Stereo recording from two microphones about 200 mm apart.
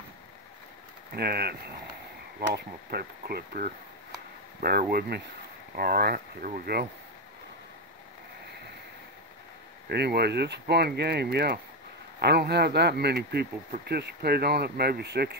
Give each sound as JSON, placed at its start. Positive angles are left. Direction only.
{"t": 1.1, "sound": "speech", "side_deg": -50}
{"t": 9.8, "sound": "speech", "side_deg": -55}